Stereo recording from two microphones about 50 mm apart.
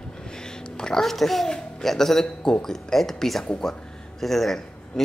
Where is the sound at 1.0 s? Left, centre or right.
Centre.